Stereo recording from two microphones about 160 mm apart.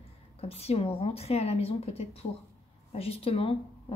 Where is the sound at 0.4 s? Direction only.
40° left (ahead or behind).